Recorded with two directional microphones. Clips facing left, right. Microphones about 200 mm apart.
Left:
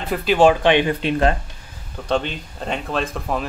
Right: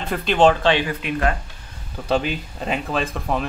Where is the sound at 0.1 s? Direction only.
5° left (ahead or behind); by 1.3 s 25° left (ahead or behind).